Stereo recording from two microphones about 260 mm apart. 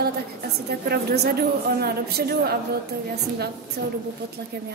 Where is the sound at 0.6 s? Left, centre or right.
Right.